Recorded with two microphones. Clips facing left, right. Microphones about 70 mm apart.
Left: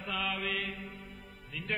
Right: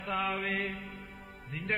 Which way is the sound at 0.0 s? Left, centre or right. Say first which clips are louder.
Right 3 dB; right.